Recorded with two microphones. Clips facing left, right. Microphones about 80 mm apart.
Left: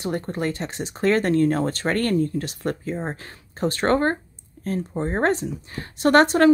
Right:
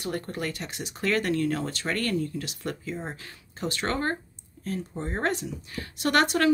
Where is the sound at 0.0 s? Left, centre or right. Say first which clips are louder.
Left 6 dB; left.